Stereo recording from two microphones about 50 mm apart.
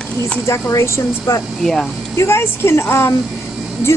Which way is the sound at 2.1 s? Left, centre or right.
Left.